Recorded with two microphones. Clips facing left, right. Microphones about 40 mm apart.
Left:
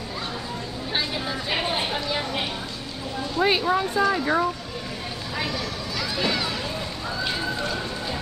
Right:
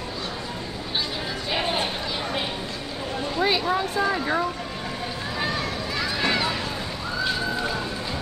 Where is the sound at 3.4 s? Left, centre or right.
Centre.